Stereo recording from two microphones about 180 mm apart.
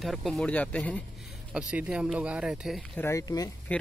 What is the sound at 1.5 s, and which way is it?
Speech, 5° right (ahead or behind).